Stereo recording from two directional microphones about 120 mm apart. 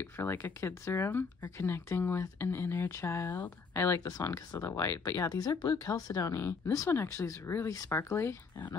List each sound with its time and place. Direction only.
0.2 s speech: 20° left (ahead or behind)